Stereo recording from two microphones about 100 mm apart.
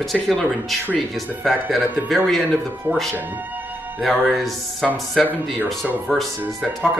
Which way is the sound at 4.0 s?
Centre (ahead or behind).